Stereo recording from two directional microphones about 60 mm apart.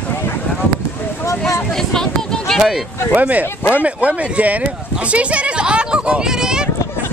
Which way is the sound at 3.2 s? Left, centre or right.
Right.